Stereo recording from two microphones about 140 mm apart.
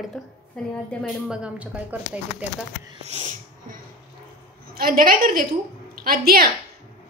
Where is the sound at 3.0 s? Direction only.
55° right (ahead or behind).